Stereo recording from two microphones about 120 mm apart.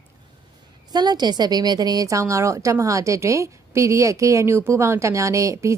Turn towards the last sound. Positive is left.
turn(degrees=-25)  # may be behind; listen again after turning